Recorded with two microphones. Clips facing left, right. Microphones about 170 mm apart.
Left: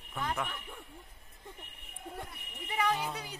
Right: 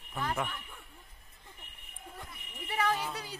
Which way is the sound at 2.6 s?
15° left (ahead or behind).